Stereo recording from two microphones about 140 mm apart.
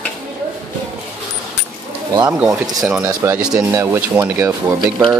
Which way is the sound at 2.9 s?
15° right (ahead or behind).